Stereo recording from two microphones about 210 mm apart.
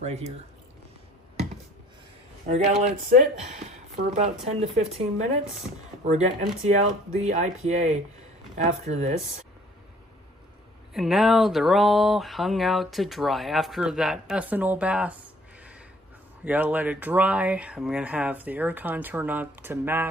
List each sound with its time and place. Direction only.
0.0 s speech: 30° right (ahead or behind)
2.5 s speech: 35° right (ahead or behind)
10.9 s speech: centre (ahead or behind)
16.4 s speech: 10° right (ahead or behind)